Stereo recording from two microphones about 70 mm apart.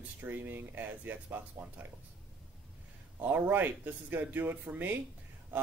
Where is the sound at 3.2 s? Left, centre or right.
Right.